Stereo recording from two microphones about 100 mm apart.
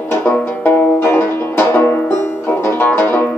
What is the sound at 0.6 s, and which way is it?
Music, 20° left (ahead or behind).